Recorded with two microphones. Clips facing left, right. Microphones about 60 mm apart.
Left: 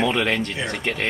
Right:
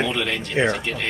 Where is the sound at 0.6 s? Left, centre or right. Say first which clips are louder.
Right 8 dB; right.